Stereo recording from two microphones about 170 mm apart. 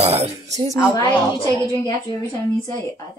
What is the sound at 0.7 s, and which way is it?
A woman's voice, 20° left (ahead or behind).